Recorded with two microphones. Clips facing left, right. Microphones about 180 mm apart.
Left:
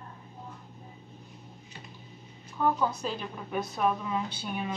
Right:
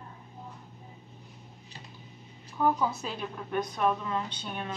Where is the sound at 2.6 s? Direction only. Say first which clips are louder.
Even; 5° right (ahead or behind).